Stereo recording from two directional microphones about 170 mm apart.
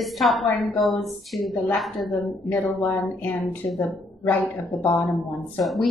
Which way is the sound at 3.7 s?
Centre (ahead or behind).